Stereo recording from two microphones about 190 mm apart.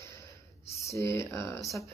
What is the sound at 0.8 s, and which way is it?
Speech, 15° left (ahead or behind).